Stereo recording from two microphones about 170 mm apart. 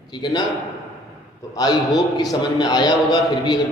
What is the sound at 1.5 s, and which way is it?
A man's voice, 25° left (ahead or behind).